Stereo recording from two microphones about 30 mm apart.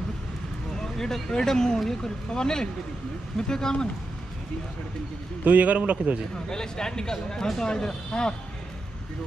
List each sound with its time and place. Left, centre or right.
0.7 s speech: centre
5.4 s a man's voice: right
6.5 s speech: left